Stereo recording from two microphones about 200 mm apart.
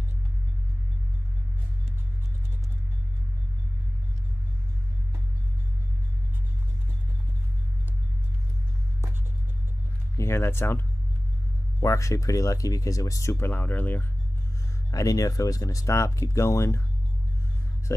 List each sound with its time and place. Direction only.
10.1 s speech: 15° left (ahead or behind)
11.8 s speech: 15° left (ahead or behind)